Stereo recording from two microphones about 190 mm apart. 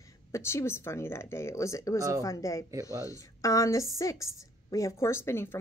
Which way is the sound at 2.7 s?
20° right (ahead or behind).